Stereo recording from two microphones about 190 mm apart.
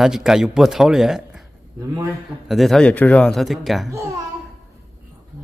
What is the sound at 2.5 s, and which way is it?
A man's voice, centre (ahead or behind).